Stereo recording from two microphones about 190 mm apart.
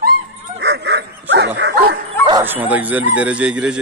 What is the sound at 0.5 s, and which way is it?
Dog, 60° right (ahead or behind).